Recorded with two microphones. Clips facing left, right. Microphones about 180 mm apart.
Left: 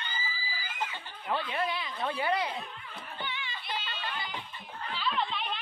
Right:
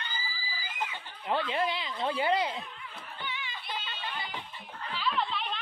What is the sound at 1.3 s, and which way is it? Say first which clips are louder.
Speech: right 2 dB; 25° right (ahead or behind).